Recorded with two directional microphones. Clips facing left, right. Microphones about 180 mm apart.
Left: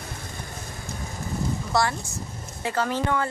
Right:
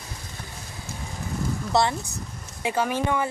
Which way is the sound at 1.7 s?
20° right (ahead or behind).